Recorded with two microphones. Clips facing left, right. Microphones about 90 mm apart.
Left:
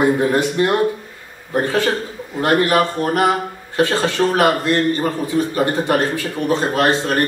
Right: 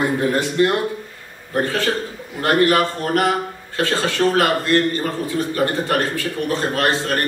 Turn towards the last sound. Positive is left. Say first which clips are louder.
# left 3 dB
turn(degrees=20)  # may be behind; listen again after turning